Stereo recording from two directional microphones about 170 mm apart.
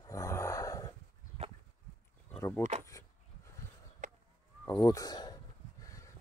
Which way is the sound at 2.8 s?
15° left (ahead or behind).